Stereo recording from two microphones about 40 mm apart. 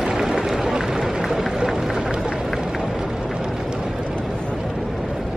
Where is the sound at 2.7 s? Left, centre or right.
Centre.